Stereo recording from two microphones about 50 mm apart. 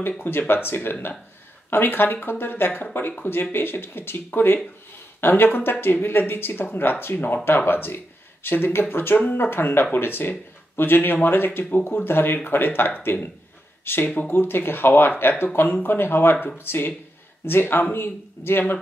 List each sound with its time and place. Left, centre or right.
0.2 s speech: left